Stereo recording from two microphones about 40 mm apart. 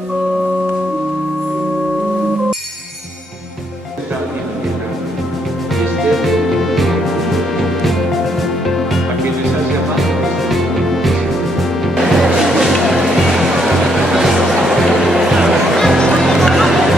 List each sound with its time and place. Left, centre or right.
5.8 s music: centre